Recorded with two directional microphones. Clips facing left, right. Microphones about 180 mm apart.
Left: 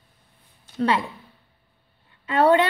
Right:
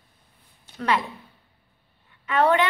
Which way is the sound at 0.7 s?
30° left (ahead or behind).